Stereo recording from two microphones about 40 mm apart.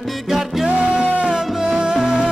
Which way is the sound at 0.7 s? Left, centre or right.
Right.